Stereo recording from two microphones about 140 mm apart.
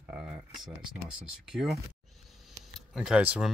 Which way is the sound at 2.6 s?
5° right (ahead or behind).